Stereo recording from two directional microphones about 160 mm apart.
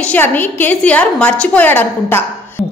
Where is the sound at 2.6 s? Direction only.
Centre (ahead or behind).